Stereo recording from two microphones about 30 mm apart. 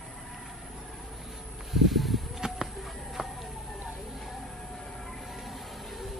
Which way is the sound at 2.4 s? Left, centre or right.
Right.